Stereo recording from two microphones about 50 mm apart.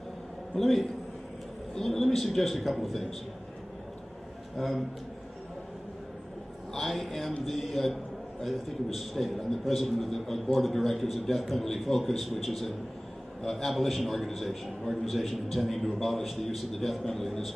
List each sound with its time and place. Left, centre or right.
0.6 s a man's voice: centre
4.6 s a man's voice: centre
6.7 s a man's voice: centre